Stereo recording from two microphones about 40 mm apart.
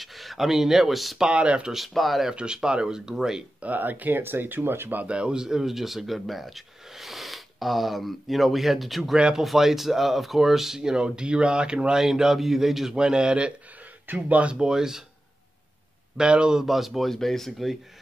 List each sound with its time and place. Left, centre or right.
0.0 s speech: centre
1.2 s speech: right
1.7 s speech: centre
2.3 s speech: centre
3.6 s speech: right
4.2 s speech: right
5.0 s speech: right; by 9.1 s centre
9.1 s speech: centre
12.0 s speech: centre
14.0 s speech: right
14.5 s speech: centre
16.2 s speech: right
16.5 s speech: centre
17.1 s speech: centre